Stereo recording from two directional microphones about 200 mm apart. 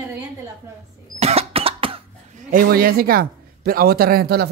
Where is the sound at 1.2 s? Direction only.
30° right (ahead or behind).